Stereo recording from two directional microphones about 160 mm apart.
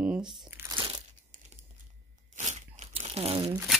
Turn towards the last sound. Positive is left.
turn(degrees=-35)  # may be behind; listen again after turning